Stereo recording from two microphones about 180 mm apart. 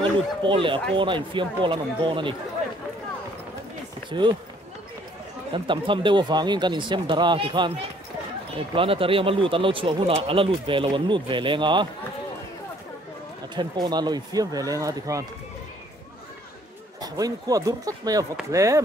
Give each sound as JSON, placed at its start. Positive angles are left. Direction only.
{"t": 0.4, "sound": "speech", "side_deg": -30}
{"t": 4.1, "sound": "speech", "side_deg": -25}
{"t": 5.5, "sound": "speech", "side_deg": -25}
{"t": 8.7, "sound": "speech", "side_deg": -30}
{"t": 13.6, "sound": "speech", "side_deg": -25}
{"t": 17.0, "sound": "speech", "side_deg": -20}